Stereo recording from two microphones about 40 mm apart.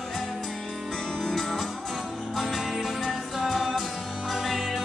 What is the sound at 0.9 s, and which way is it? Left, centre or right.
Music, centre.